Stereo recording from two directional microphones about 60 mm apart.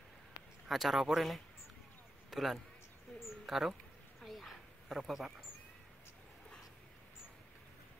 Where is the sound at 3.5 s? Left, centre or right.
Centre.